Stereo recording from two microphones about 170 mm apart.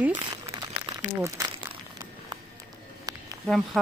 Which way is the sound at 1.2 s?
15° right (ahead or behind).